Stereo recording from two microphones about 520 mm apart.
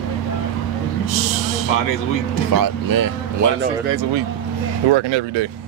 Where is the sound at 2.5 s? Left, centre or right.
Right.